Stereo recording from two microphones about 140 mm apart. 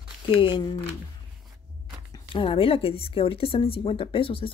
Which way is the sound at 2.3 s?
40° left (ahead or behind).